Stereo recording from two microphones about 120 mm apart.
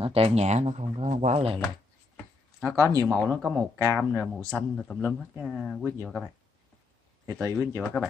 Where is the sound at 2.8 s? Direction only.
30° right (ahead or behind).